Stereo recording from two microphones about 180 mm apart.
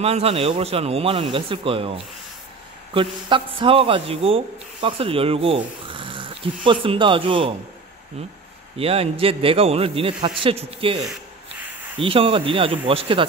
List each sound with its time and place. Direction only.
0.0 s a man's voice: 35° right (ahead or behind)
8.7 s a man's voice: 30° right (ahead or behind)
12.0 s a man's voice: 30° right (ahead or behind)